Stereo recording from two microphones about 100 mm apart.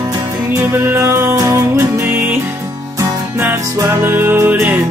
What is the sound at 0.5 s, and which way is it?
Music, 25° right (ahead or behind).